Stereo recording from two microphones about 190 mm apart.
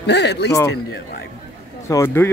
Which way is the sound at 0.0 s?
65° left (ahead or behind).